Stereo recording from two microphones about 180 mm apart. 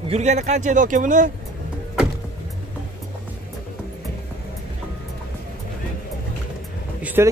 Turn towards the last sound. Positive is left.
turn(degrees=-15)  # may be behind; listen again after turning